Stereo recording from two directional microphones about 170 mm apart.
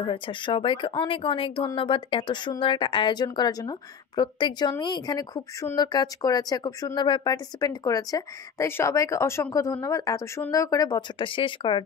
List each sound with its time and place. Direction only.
0.0 s speech: 30° left (ahead or behind)